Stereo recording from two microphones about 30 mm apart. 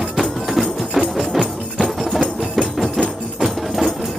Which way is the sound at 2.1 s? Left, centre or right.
Right.